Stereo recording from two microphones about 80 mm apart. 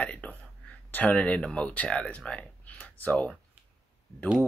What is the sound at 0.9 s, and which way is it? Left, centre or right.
Speech, centre.